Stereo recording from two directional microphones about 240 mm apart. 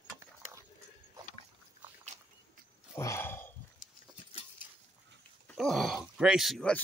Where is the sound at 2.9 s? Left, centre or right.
Centre.